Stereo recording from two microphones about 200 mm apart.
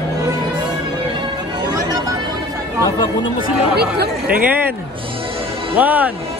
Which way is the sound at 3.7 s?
55° right (ahead or behind).